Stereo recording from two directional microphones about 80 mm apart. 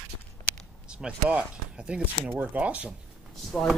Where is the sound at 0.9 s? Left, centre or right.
Centre.